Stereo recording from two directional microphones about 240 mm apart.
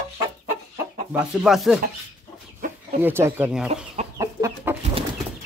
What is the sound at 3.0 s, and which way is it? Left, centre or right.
Speech, centre.